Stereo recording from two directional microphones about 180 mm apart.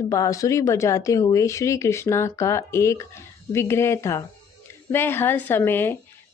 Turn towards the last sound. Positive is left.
turn(degrees=15)  # may be behind; listen again after turning